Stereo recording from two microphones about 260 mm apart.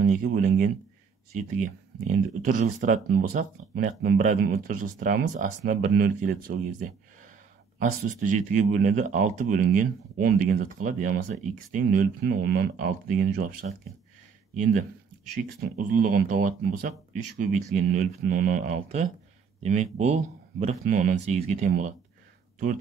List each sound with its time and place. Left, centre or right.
0.0 s speech: right
16.1 s speech: right